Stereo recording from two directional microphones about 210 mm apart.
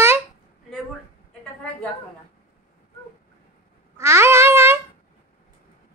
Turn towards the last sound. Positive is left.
turn(degrees=-10)  # may be behind; listen again after turning